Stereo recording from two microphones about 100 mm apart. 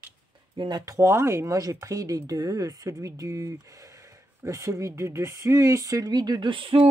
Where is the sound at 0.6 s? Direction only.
45° right (ahead or behind).